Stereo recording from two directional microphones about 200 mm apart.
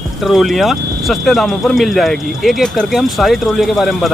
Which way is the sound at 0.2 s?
Centre (ahead or behind).